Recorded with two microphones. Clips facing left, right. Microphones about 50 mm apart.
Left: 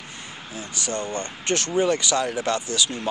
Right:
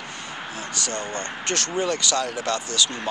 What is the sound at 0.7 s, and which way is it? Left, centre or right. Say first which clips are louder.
Speech: left 2 dB; centre.